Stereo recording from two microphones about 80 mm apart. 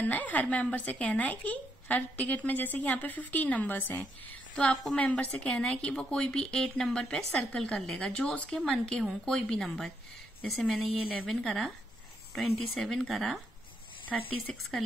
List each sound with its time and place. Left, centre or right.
0.0 s a woman's voice: centre
14.4 s a woman's voice: centre